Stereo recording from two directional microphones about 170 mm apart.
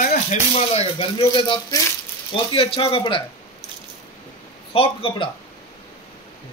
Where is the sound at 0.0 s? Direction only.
45° left (ahead or behind).